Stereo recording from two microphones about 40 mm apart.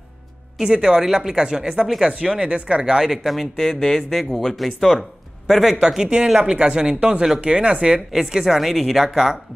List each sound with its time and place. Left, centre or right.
0.6 s speech: centre
3.3 s speech: centre
5.5 s speech: centre; by 8.0 s right
8.1 s speech: centre